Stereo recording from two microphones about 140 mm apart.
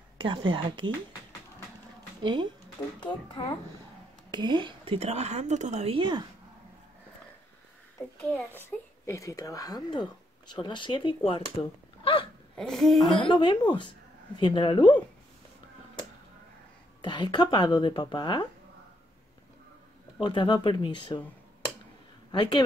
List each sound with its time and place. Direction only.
0.2 s speech: 35° right (ahead or behind)
2.2 s speech: 35° right (ahead or behind)
3.0 s speech: 30° left (ahead or behind)
4.3 s a woman's voice: 35° right (ahead or behind); by 5.9 s 55° right (ahead or behind)
5.9 s speech: 35° right (ahead or behind)
8.2 s a child's voice: 10° left (ahead or behind)
8.6 s speech: 20° left (ahead or behind); by 11.5 s 35° left (ahead or behind)
12.0 s hiccup: 40° left (ahead or behind)
12.5 s a sound: 5° left (ahead or behind)
13.0 s speech: 35° left (ahead or behind)
17.0 s speech: 35° left (ahead or behind)
20.2 s speech: 35° left (ahead or behind)
22.3 s speech: 35° left (ahead or behind)